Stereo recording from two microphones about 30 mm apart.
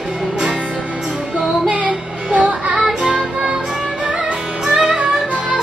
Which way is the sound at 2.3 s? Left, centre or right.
Right.